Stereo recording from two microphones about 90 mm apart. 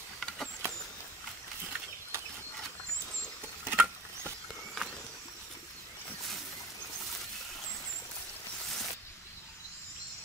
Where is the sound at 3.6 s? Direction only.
20° right (ahead or behind).